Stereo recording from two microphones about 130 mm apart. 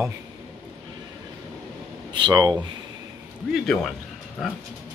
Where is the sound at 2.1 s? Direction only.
35° right (ahead or behind).